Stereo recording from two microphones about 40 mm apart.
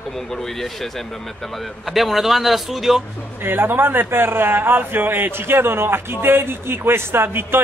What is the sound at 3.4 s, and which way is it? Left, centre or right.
A man's voice, right.